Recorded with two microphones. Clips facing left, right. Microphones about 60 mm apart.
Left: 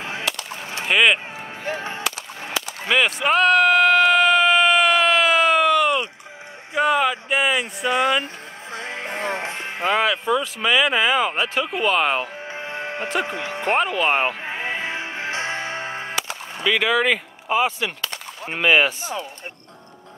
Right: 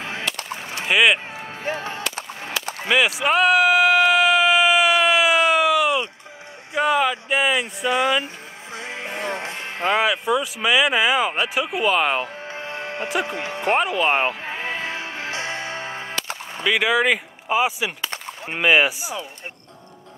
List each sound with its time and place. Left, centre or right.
0.0 s chop: centre
0.8 s speech: centre
1.8 s whip: left
2.9 s a sound: centre
6.8 s speech: centre
8.7 s music: left
9.8 s speech: centre
12.4 s music: left
13.2 s speech: left
13.7 s speech: centre
14.4 s music: left
16.6 s speech: centre